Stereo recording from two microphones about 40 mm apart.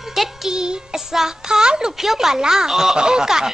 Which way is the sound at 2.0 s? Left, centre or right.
Centre.